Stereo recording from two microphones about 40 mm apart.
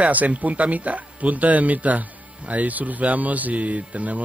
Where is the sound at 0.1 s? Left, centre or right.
Right.